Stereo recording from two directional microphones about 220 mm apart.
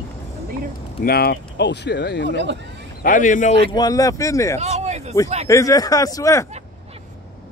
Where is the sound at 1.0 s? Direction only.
45° left (ahead or behind).